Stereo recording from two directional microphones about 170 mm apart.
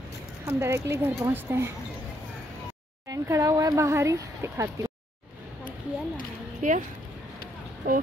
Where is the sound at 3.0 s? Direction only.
20° right (ahead or behind).